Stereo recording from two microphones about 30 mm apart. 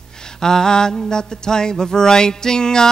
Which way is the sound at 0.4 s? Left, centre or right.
Centre.